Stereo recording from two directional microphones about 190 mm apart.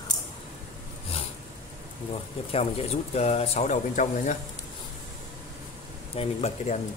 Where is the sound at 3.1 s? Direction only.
35° left (ahead or behind).